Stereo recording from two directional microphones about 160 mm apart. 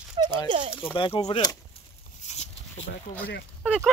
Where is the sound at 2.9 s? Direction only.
90° left.